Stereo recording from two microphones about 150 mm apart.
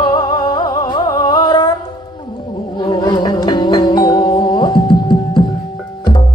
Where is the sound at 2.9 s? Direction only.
30° left (ahead or behind).